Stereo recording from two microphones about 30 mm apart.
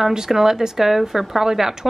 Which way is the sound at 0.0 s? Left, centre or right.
Centre.